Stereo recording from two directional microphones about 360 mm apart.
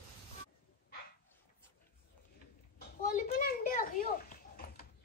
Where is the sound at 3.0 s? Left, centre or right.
Left.